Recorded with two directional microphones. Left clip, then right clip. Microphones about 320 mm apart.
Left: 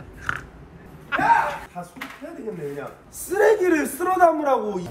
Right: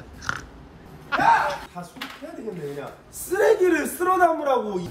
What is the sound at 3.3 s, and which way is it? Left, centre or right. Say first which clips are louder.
Speech: left 1 dB; centre.